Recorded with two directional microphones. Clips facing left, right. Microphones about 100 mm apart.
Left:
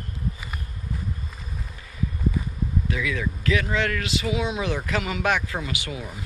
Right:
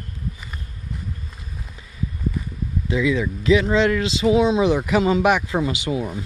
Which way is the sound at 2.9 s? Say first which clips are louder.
Right 12 dB; 20° right (ahead or behind).